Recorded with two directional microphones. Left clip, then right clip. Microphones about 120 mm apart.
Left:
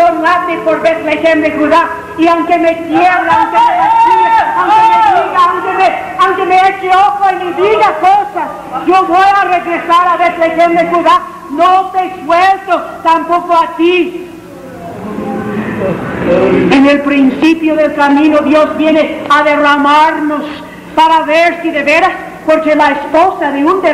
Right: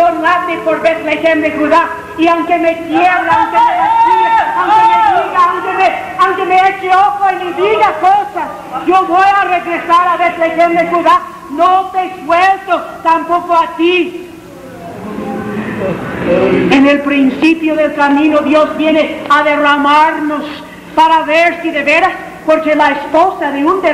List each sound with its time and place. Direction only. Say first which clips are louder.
0.0 s a woman's voice: left 2 dB; 30° right (ahead or behind)
15.2 s a man's voice: left 2 dB; 30° right (ahead or behind)